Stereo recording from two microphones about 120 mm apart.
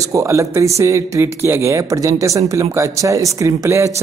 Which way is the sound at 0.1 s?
25° right (ahead or behind).